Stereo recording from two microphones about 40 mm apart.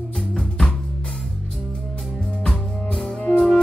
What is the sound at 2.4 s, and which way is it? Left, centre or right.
Music, centre.